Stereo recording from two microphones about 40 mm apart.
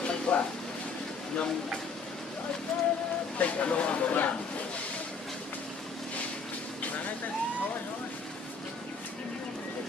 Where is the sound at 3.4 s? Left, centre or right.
Left.